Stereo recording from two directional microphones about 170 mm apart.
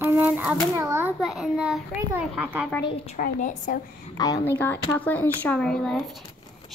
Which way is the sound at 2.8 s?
55° left (ahead or behind).